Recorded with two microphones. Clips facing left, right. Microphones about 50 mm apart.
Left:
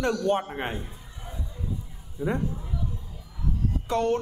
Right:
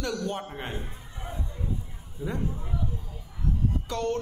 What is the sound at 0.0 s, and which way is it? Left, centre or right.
Speech, left.